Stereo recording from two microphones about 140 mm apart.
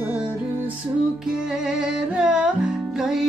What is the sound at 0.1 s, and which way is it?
Music, 10° right (ahead or behind).